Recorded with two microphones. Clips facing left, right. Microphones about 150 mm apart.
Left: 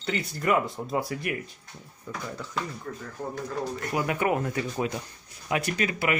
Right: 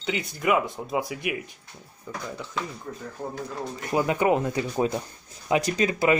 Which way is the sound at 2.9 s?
20° right (ahead or behind).